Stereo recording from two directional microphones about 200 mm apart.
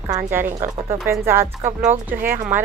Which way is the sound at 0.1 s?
10° right (ahead or behind).